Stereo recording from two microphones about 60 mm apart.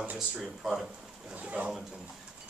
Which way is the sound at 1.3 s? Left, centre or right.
Right.